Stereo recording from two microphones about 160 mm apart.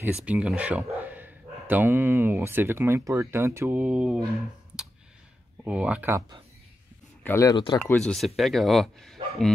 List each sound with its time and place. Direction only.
0.0 s speech: 10° right (ahead or behind)
5.6 s speech: 5° right (ahead or behind)
7.2 s speech: 20° left (ahead or behind)
7.8 s a man's voice: 5° left (ahead or behind)